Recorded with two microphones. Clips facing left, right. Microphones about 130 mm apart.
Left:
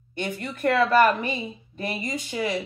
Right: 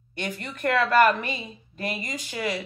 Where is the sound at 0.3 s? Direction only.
25° left (ahead or behind).